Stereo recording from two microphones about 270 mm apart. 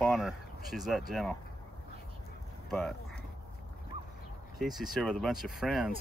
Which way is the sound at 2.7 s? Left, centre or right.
Centre.